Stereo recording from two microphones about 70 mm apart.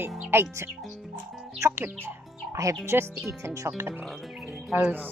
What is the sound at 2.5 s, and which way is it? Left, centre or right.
Speech, right.